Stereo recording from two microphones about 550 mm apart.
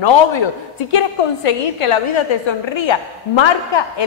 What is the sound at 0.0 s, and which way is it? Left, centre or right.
A woman's voice, left.